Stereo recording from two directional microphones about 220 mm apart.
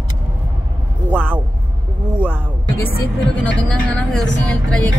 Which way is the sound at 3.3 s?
5° left (ahead or behind).